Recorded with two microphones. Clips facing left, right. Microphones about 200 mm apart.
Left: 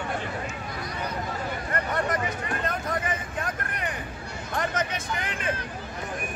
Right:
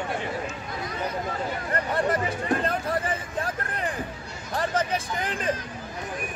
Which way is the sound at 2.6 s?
30° right (ahead or behind).